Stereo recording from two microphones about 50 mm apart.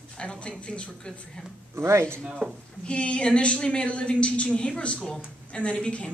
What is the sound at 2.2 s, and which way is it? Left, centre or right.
Speech, centre.